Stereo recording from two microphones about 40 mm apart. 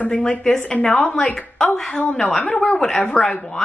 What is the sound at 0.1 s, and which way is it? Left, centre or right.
Speech, centre.